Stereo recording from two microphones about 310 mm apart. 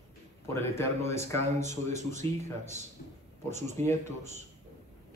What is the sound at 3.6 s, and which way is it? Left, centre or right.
Speech, right.